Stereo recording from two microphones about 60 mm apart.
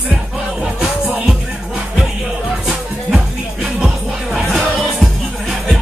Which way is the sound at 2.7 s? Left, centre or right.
Centre.